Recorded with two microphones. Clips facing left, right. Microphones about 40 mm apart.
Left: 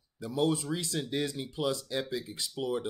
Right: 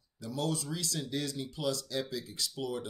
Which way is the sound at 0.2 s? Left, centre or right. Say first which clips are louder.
Left 5 dB; left.